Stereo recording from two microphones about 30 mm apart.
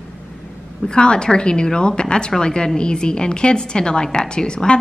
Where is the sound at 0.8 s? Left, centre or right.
Left.